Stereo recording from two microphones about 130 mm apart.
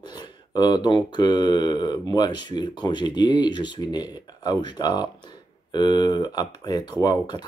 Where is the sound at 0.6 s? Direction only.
35° left (ahead or behind).